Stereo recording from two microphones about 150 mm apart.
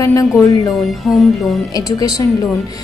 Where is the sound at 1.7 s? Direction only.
25° left (ahead or behind).